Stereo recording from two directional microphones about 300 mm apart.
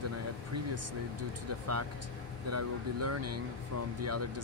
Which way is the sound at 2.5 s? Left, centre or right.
Right.